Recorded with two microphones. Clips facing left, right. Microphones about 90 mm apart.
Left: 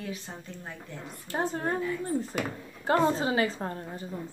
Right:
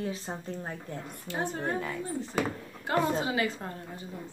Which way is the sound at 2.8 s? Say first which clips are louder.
Left 3 dB; 35° left (ahead or behind).